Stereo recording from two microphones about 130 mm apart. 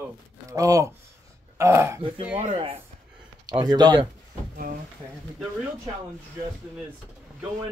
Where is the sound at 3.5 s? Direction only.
35° right (ahead or behind).